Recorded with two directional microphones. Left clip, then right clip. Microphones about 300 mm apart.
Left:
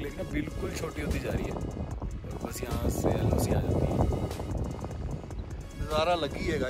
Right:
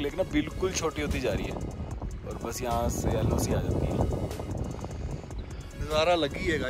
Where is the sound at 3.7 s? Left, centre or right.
Right.